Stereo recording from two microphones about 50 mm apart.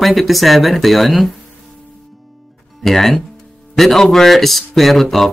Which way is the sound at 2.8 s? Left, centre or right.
Centre.